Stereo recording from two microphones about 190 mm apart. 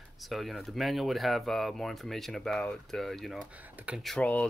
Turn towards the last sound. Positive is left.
turn(degrees=5)  # may be behind; listen again after turning